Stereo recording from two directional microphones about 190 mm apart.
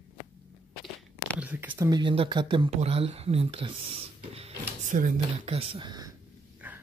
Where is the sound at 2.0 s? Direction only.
25° right (ahead or behind).